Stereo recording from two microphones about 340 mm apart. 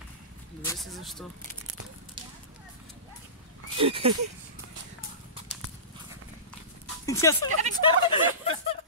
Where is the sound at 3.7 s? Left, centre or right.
Centre.